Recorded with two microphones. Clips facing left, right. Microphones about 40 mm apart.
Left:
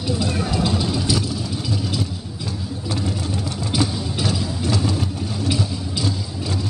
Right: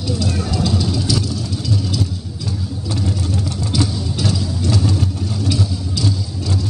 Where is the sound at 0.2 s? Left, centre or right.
Centre.